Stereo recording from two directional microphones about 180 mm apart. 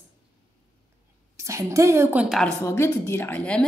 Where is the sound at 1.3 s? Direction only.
15° right (ahead or behind).